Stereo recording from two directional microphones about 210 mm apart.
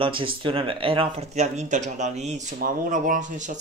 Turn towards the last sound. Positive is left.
turn(degrees=-35)  # may be behind; listen again after turning